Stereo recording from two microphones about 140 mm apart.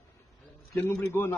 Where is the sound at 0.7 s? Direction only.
15° left (ahead or behind).